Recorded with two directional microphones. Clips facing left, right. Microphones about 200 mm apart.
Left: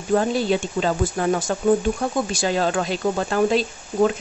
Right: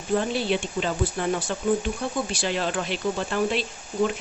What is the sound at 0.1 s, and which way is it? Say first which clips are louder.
Speech: left 4 dB; 45° left (ahead or behind).